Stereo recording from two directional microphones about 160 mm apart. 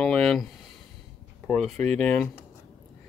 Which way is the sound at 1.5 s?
5° left (ahead or behind).